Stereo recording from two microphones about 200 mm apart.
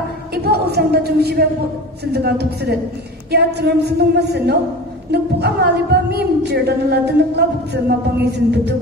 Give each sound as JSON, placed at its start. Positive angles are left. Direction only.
{"t": 0.3, "sound": "a woman's voice", "side_deg": -50}